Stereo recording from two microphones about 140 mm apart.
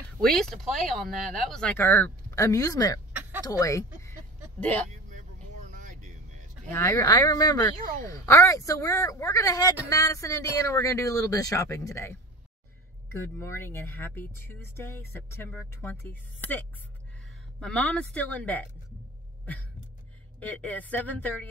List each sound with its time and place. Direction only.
0.2 s speech: 5° left (ahead or behind); by 3.0 s 25° left (ahead or behind)
3.1 s a sound: 10° right (ahead or behind)
3.4 s speech: 25° left (ahead or behind)
5.8 s vehicle: 65° right (ahead or behind)
6.7 s speech: 20° left (ahead or behind)
20.3 s speech: 10° left (ahead or behind)